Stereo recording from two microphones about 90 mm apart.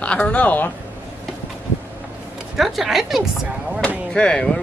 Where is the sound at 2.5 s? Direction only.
5° right (ahead or behind).